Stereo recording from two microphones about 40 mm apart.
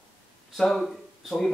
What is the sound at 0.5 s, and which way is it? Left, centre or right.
Speech, centre.